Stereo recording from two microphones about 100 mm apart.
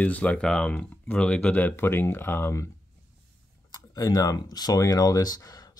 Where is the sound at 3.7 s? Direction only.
35° left (ahead or behind).